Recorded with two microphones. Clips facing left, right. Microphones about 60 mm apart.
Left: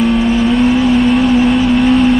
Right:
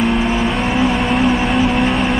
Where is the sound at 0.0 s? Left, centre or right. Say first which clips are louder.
Left 4 dB; centre.